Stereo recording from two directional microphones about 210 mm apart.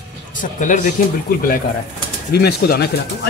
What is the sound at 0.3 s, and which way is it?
Speech, 40° left (ahead or behind).